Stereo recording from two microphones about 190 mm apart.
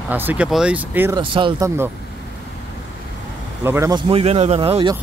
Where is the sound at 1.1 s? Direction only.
25° right (ahead or behind).